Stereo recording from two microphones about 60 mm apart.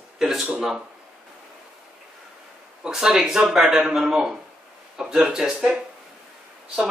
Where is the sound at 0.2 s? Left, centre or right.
Centre.